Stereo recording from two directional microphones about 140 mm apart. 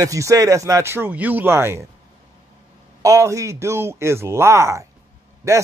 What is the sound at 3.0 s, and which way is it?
Speech, 25° right (ahead or behind).